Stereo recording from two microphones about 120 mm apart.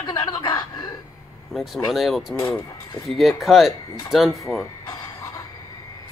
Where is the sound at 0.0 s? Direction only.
35° left (ahead or behind).